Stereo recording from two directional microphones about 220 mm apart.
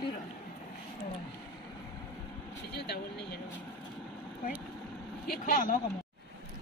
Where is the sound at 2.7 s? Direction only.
45° left (ahead or behind).